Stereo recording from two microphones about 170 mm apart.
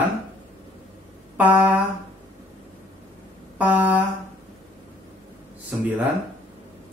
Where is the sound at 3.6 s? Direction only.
10° right (ahead or behind).